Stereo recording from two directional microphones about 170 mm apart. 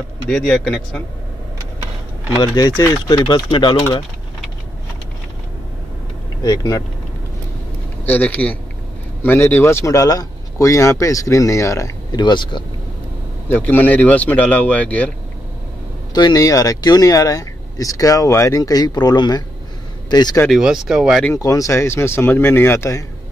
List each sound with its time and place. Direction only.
0.3 s speech: 5° left (ahead or behind)
2.3 s speech: 25° left (ahead or behind)
6.4 s speech: 20° left (ahead or behind)
8.0 s speech: 10° left (ahead or behind); by 12.6 s 25° left (ahead or behind)
13.5 s speech: 10° left (ahead or behind)
16.1 s speech: 25° left (ahead or behind)
20.4 s speech: centre (ahead or behind)
21.3 s speech: 20° left (ahead or behind)